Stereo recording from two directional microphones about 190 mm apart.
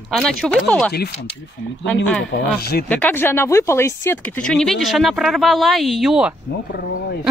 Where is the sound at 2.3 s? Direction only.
55° left (ahead or behind).